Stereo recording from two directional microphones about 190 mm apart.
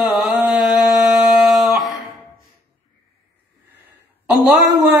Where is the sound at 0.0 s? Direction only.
5° right (ahead or behind).